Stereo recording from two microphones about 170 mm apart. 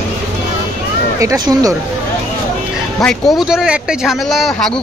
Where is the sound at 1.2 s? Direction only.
20° right (ahead or behind).